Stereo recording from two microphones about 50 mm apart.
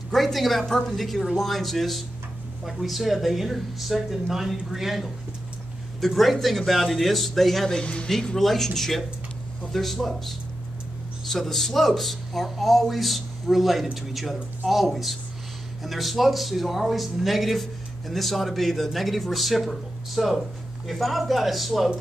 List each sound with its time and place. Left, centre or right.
0.1 s speech: centre
7.8 s speech: left
8.1 s speech: centre